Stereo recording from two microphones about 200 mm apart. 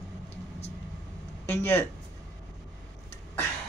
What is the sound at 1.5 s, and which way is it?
Speech, 10° left (ahead or behind).